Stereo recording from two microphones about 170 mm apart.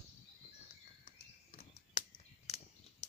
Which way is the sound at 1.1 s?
40° left (ahead or behind).